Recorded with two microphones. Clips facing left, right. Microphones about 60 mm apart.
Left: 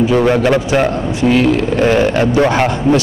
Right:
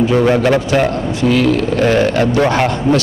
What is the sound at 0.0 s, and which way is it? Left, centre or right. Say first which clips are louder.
A man's voice: even; centre.